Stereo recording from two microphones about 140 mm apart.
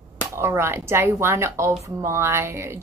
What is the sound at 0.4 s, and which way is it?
A woman's voice, 20° right (ahead or behind).